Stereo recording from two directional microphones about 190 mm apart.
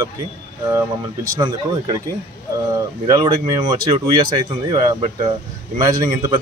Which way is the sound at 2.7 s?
20° right (ahead or behind).